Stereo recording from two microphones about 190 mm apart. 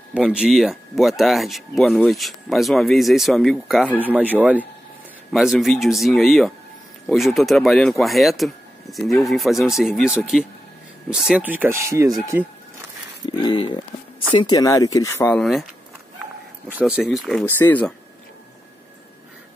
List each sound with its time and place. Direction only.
0.1 s speech: 5° right (ahead or behind)
13.2 s speech: 25° left (ahead or behind)
16.7 s speech: 5° right (ahead or behind)
17.5 s speech: 10° left (ahead or behind)